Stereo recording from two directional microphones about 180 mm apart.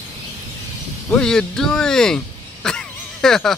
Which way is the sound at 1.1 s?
5° left (ahead or behind).